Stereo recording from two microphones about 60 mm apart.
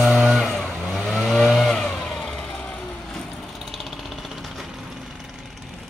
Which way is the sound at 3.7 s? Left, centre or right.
Centre.